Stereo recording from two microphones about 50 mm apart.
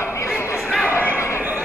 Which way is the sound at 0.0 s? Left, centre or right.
Left.